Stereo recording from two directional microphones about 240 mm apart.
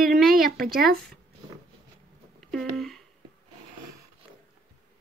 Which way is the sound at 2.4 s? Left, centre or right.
Centre.